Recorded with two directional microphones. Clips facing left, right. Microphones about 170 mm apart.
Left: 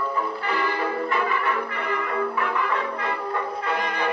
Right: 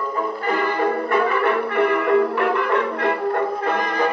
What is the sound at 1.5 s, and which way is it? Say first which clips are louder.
Music: right 8 dB; 65° right (ahead or behind).